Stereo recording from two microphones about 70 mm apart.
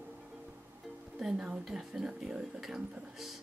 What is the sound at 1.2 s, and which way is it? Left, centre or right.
Speech, centre.